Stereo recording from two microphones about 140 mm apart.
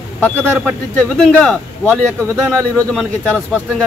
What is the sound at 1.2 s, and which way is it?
Speech, 5° left (ahead or behind).